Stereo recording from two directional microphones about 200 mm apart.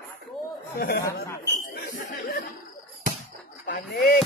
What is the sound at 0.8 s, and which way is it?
Speech, 55° left (ahead or behind).